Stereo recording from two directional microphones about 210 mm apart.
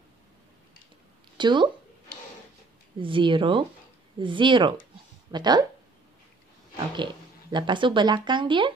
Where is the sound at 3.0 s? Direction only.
25° right (ahead or behind).